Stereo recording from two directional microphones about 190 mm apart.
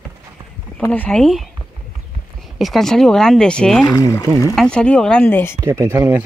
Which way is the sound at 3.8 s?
20° left (ahead or behind).